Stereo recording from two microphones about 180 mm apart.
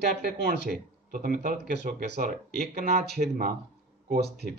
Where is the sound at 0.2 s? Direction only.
55° right (ahead or behind).